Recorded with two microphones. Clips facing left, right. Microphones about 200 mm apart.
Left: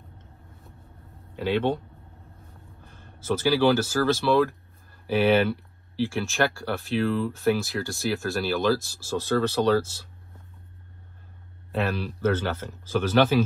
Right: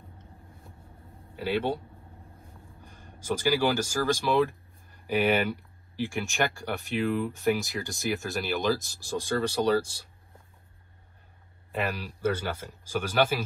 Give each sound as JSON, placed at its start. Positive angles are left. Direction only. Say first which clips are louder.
{"t": 1.3, "sound": "speech", "louder": "left 4 dB", "side_deg": -10}
{"t": 2.8, "sound": "speech", "louder": "even", "side_deg": -15}
{"t": 11.8, "sound": "speech", "louder": "left 3 dB", "side_deg": -10}